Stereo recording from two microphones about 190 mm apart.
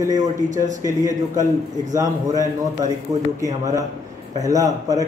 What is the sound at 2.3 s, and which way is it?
Speech, 40° right (ahead or behind).